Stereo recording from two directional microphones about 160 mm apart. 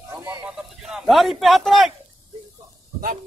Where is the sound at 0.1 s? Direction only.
20° right (ahead or behind).